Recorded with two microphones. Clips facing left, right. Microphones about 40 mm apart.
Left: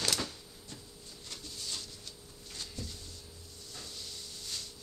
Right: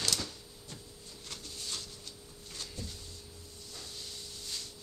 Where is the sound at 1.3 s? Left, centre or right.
Centre.